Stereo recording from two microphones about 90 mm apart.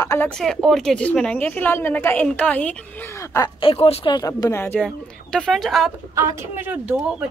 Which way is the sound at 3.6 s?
90° left.